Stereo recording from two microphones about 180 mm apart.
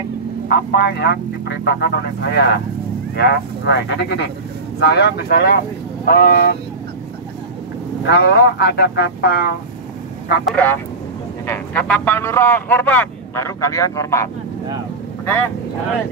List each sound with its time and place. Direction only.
0.5 s speech: 65° left (ahead or behind)
8.1 s speech: 65° left (ahead or behind)
10.4 s speech: 10° left (ahead or behind)